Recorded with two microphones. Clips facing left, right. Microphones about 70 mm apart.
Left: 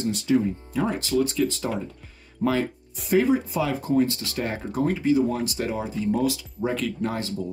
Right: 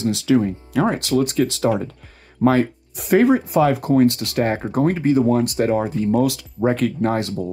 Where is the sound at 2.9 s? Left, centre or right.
Right.